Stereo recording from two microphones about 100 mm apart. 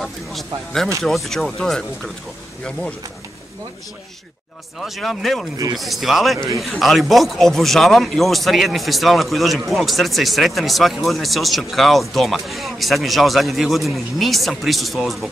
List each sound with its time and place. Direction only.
0.0 s speech: centre (ahead or behind)
4.7 s speech: centre (ahead or behind)